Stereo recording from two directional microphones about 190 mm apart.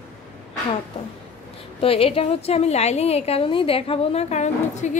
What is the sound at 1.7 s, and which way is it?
A woman's voice, 30° left (ahead or behind).